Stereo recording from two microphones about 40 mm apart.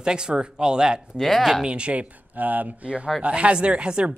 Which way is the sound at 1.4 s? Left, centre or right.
Centre.